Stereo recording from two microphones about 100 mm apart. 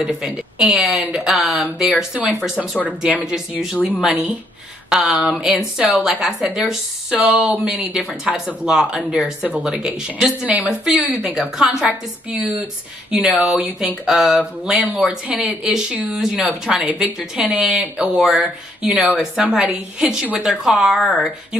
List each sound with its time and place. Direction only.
0.0 s speech: 5° right (ahead or behind)
2.8 s speech: 15° right (ahead or behind)
10.9 s speech: centre (ahead or behind)
21.0 s speech: 15° left (ahead or behind)